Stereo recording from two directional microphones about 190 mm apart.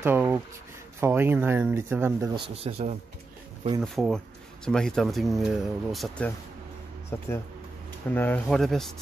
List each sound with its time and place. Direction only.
0.0 s speech: 10° right (ahead or behind)
2.4 s speech: 30° right (ahead or behind)
3.8 s speech: centre (ahead or behind)